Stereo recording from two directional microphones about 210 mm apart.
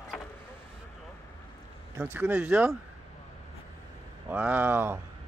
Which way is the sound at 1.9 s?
10° right (ahead or behind).